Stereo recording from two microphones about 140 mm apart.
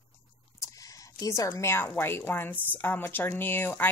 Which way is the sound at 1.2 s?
20° left (ahead or behind).